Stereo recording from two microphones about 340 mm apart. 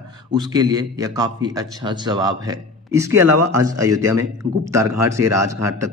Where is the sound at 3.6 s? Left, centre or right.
Centre.